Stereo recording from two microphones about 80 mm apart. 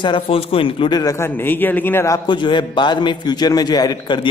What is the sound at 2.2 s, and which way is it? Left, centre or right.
A man's voice, left.